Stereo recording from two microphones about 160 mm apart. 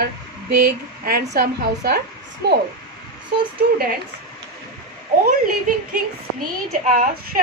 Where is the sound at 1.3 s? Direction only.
90° right.